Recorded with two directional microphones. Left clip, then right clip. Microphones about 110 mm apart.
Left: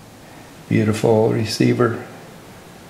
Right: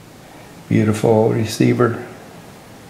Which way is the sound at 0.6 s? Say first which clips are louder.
Right 1 dB; 20° left (ahead or behind).